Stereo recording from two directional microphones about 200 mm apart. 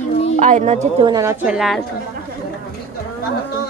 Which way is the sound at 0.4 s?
40° right (ahead or behind).